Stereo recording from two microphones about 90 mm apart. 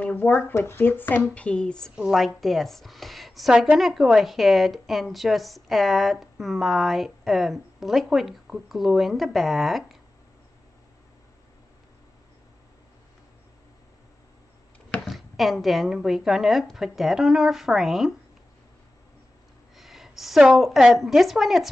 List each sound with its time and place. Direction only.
0.0 s a woman's voice: 20° left (ahead or behind)
2.0 s a woman's voice: 5° right (ahead or behind)
15.0 s a woman's voice: centre (ahead or behind)
19.7 s a woman's voice: 5° right (ahead or behind)